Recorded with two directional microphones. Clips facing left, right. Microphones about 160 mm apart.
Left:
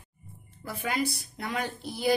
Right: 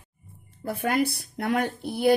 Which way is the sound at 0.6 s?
55° right (ahead or behind).